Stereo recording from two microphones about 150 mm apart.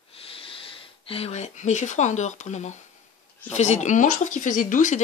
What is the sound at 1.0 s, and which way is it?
Speech, 40° left (ahead or behind).